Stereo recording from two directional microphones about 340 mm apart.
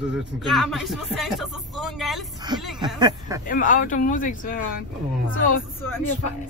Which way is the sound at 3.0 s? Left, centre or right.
Centre.